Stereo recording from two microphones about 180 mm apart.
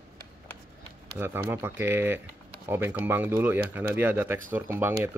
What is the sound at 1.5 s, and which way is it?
Speech, 10° right (ahead or behind).